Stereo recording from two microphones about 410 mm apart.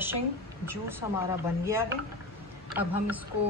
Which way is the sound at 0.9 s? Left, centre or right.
Centre.